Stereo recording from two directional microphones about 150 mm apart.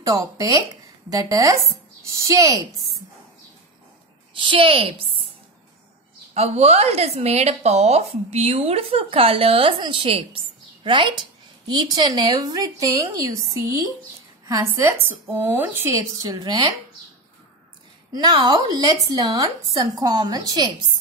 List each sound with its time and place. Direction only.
0.0 s speech: 25° right (ahead or behind)
4.3 s speech: 35° right (ahead or behind)
6.3 s speech: 45° right (ahead or behind); by 16.6 s 25° right (ahead or behind)
18.1 s speech: 30° right (ahead or behind)